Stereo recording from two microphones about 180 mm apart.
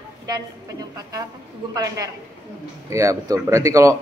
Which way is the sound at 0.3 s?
20° right (ahead or behind).